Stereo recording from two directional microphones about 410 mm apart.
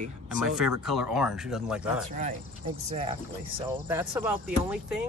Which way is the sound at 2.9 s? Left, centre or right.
Centre.